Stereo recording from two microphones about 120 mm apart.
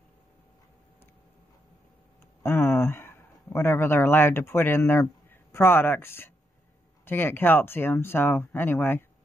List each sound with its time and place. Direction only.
2.4 s speech: 20° left (ahead or behind)